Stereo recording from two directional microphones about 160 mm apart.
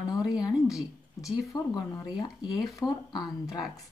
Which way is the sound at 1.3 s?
25° left (ahead or behind).